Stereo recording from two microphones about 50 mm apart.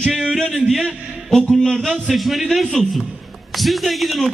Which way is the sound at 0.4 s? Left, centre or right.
Centre.